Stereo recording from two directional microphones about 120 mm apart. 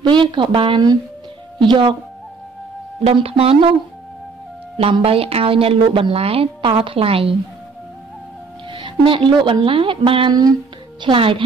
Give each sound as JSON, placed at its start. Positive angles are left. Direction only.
{"t": 0.0, "sound": "a woman's voice", "side_deg": -40}
{"t": 3.0, "sound": "a woman's voice", "side_deg": -55}
{"t": 5.0, "sound": "a woman's voice", "side_deg": -55}
{"t": 8.6, "sound": "a woman's voice", "side_deg": -45}